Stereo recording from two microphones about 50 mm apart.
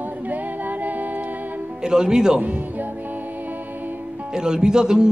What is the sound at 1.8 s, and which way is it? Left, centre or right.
Speech, centre.